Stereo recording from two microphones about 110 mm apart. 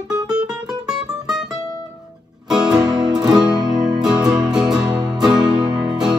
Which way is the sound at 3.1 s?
35° right (ahead or behind).